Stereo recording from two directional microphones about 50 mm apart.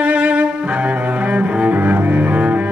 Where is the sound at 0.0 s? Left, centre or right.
Right.